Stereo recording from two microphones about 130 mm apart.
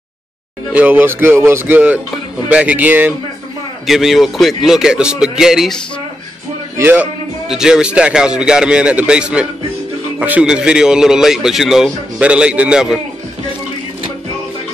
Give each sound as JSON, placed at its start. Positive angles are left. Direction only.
{"t": 0.7, "sound": "a man's voice", "side_deg": -15}
{"t": 3.8, "sound": "speech", "side_deg": 0}
{"t": 6.8, "sound": "a man's voice", "side_deg": -15}